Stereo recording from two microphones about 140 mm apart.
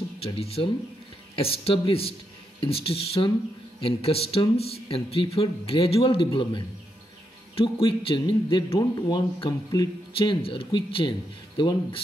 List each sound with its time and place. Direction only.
0.2 s speech: 45° left (ahead or behind)